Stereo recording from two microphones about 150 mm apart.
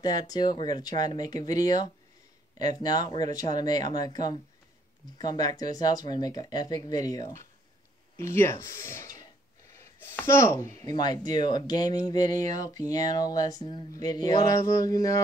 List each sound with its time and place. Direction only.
0.0 s speech: 25° left (ahead or behind)
9.9 s speech: 15° left (ahead or behind)